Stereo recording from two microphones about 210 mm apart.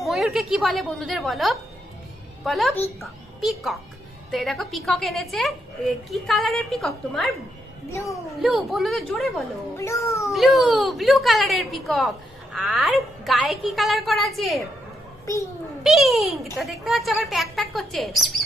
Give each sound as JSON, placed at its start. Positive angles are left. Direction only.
{"t": 0.0, "sound": "a woman's voice", "side_deg": 0}
{"t": 7.9, "sound": "speech", "side_deg": 15}
{"t": 8.4, "sound": "a woman's voice", "side_deg": 0}
{"t": 9.8, "sound": "speech", "side_deg": 15}
{"t": 10.3, "sound": "a woman's voice", "side_deg": 0}
{"t": 15.8, "sound": "a woman's voice", "side_deg": 0}